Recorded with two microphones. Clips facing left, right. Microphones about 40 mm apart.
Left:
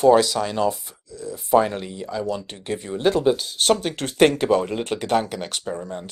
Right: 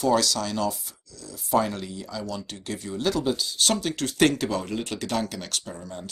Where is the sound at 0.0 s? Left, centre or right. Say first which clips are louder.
Left 7 dB; left.